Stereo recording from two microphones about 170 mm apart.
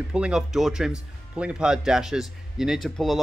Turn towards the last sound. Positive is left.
turn(degrees=0)  # may be behind; listen again after turning